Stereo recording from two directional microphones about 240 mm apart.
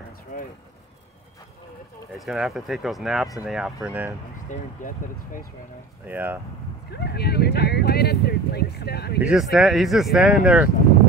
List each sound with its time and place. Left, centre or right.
2.1 s speech: centre
4.5 s speech: left
6.0 s speech: centre
6.9 s speech: left
9.2 s speech: centre